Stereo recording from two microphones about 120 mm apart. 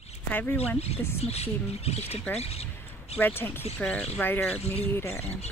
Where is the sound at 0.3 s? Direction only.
15° left (ahead or behind).